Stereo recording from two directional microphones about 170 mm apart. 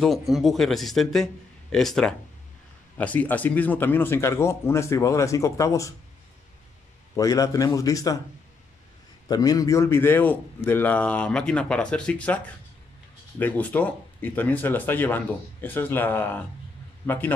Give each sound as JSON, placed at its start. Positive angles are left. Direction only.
{"t": 0.0, "sound": "a man's voice", "side_deg": 0}
{"t": 7.2, "sound": "a man's voice", "side_deg": 20}
{"t": 9.3, "sound": "a man's voice", "side_deg": 20}
{"t": 13.4, "sound": "a man's voice", "side_deg": 10}